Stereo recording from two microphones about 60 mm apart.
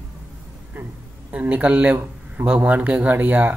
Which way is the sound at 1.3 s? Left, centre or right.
Right.